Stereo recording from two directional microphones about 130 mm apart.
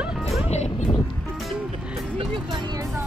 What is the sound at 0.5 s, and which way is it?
Vehicle, 60° left (ahead or behind).